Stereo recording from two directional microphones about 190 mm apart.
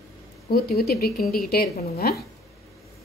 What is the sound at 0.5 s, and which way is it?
Speech, 50° left (ahead or behind).